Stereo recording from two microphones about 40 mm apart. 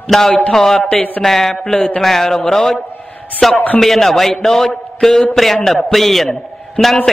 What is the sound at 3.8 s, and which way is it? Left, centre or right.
A man's voice, centre.